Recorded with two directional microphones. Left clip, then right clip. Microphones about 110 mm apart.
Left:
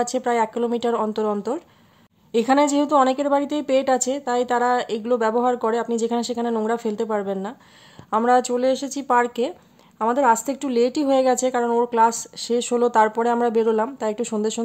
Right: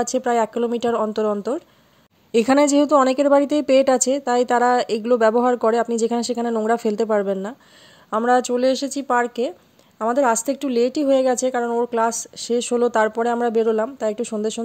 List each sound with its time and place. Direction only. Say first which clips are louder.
0.0 s speech: right 1 dB; 45° right (ahead or behind)
2.3 s a woman's voice: right 2 dB; 65° right (ahead or behind)
8.3 s speech: right 1 dB; 40° right (ahead or behind)